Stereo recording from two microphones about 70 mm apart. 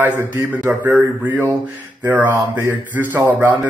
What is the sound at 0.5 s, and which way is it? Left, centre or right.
A man's voice, right.